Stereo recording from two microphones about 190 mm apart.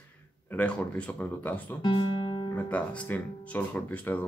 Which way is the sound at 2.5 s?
10° left (ahead or behind).